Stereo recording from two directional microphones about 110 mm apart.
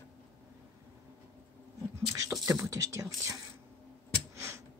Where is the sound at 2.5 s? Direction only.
30° right (ahead or behind).